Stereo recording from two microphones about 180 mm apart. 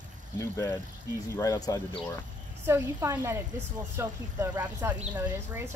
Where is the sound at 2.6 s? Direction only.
15° right (ahead or behind).